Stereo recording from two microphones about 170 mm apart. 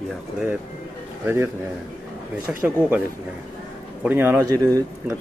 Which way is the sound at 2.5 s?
5° right (ahead or behind).